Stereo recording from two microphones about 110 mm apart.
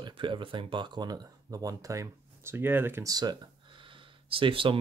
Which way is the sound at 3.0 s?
40° right (ahead or behind).